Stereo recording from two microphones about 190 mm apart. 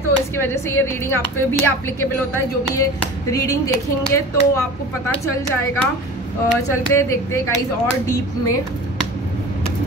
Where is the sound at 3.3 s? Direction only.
15° left (ahead or behind).